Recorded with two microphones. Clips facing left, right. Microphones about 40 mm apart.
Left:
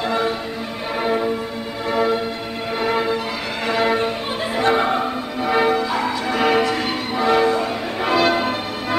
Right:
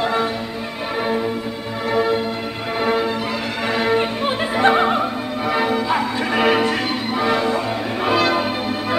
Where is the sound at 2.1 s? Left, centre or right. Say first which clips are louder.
Right 1 dB; centre.